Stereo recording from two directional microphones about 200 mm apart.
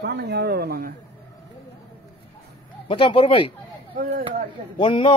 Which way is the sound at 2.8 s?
25° left (ahead or behind).